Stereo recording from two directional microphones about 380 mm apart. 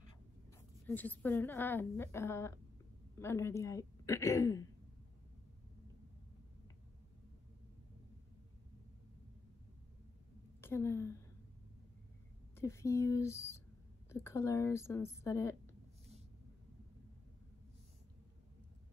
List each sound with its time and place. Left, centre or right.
0.6 s a woman's voice: centre
10.6 s a woman's voice: centre
12.5 s a woman's voice: centre